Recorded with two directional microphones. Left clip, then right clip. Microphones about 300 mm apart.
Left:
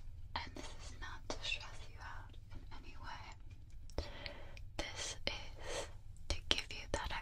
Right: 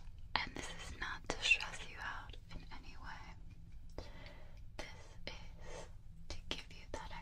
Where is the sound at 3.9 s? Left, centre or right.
Left.